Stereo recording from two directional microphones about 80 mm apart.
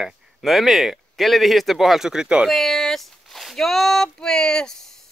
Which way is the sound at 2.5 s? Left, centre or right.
Centre.